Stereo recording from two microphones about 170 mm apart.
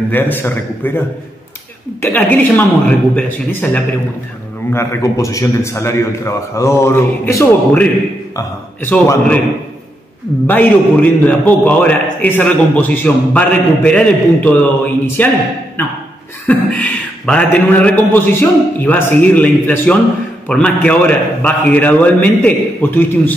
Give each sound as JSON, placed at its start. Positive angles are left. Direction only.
{"t": 0.1, "sound": "a man's voice", "side_deg": 10}
{"t": 10.4, "sound": "a man's voice", "side_deg": 10}